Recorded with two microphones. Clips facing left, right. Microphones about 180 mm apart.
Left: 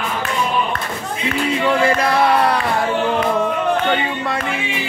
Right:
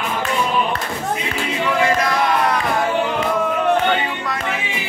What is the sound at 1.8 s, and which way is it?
Music, 30° left (ahead or behind).